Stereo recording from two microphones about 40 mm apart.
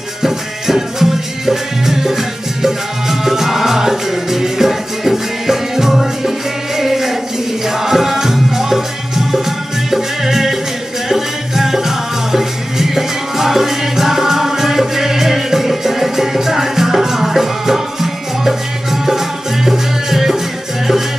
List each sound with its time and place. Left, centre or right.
0.2 s music: centre